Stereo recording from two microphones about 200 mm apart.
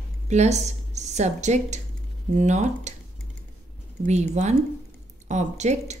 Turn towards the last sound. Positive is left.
turn(degrees=-35)  # may be behind; listen again after turning